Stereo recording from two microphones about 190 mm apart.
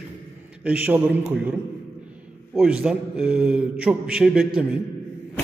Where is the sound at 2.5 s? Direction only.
5° right (ahead or behind).